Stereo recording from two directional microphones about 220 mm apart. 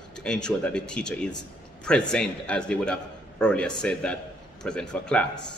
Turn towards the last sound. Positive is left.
turn(degrees=5)  # may be behind; listen again after turning